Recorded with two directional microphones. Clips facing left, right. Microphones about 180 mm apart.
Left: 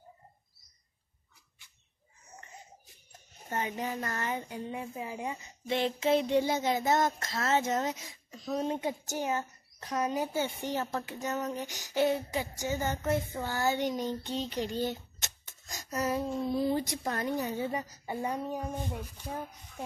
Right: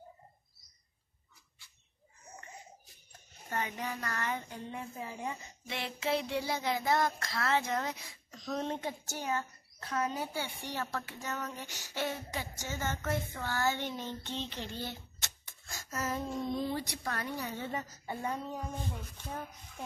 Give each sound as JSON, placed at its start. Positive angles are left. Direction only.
{"t": 3.1, "sound": "speech", "side_deg": 20}
{"t": 8.4, "sound": "speech", "side_deg": 5}
{"t": 15.7, "sound": "a sound", "side_deg": 15}
{"t": 16.4, "sound": "speech", "side_deg": 10}